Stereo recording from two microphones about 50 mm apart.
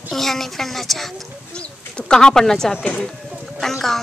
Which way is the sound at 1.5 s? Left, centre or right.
Centre.